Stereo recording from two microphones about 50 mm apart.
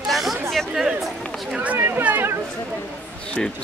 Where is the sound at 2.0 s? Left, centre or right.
Right.